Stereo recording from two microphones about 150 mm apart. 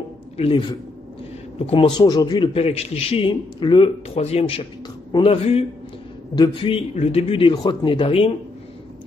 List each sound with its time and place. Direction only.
0.4 s a man's voice: 35° left (ahead or behind)